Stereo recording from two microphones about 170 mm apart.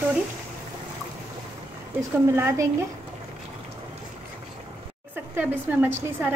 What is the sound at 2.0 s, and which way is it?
Speech, 15° right (ahead or behind).